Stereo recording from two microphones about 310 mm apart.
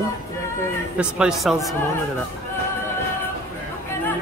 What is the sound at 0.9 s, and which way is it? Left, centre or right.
Speech, centre.